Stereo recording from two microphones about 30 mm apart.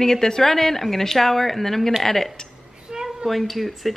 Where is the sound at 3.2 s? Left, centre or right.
Centre.